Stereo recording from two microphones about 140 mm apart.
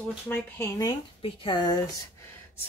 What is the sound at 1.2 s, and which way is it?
Speech, 40° left (ahead or behind).